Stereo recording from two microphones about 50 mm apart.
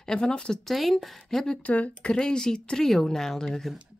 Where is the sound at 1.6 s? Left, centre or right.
Left.